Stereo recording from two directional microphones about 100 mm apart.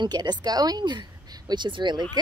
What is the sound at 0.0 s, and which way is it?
A woman's voice, 45° right (ahead or behind).